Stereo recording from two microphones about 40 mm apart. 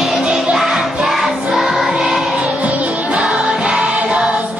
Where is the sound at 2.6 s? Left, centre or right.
Right.